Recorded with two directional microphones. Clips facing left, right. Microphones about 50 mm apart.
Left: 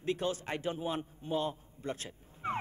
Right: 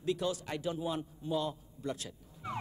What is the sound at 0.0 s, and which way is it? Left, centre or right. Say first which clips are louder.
Speech: even; left.